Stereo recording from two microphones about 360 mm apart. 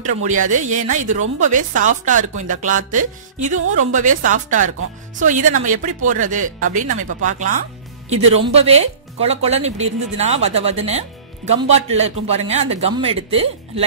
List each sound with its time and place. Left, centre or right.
0.0 s speech: right